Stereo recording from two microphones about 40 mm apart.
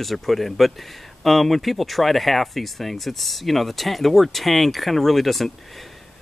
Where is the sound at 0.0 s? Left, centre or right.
Centre.